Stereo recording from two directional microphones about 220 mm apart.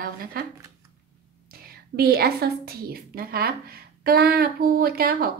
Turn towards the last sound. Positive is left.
turn(degrees=-40)  # may be behind; listen again after turning